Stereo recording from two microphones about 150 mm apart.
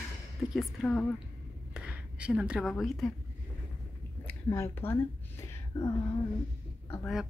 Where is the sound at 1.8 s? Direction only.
5° right (ahead or behind).